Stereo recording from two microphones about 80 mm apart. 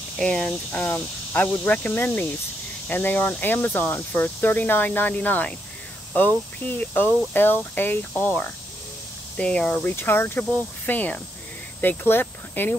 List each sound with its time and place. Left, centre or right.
0.2 s speech: centre
9.9 s speech: left